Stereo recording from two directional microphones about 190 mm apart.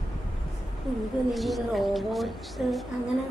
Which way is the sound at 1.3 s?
Centre (ahead or behind).